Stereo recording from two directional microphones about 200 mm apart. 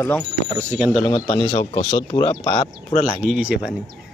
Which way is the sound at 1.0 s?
25° left (ahead or behind).